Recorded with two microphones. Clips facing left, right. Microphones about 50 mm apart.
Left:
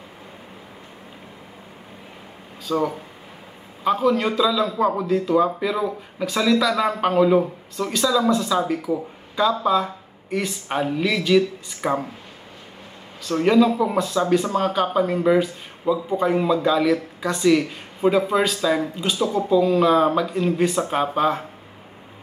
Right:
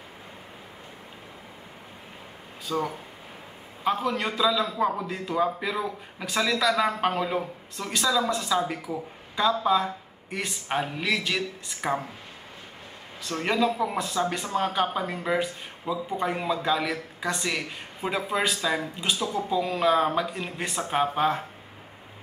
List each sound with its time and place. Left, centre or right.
2.7 s speech: left
3.8 s speech: centre
8.9 s speech: centre
9.3 s speech: centre
13.4 s speech: centre
19.1 s speech: centre
19.6 s speech: centre